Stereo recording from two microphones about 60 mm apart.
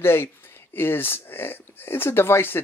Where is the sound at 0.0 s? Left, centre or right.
Left.